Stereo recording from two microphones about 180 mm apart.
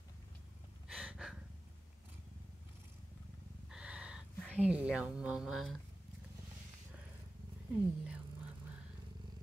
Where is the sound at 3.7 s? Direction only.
5° right (ahead or behind).